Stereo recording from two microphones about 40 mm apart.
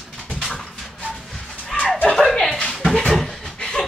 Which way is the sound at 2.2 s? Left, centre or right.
Centre.